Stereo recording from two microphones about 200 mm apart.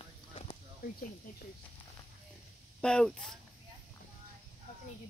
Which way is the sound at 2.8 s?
5° left (ahead or behind).